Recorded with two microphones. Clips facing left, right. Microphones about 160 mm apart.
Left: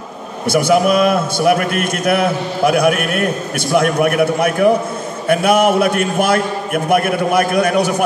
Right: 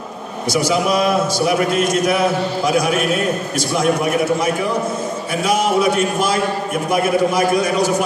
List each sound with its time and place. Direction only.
0.5 s a man's voice: 60° left (ahead or behind)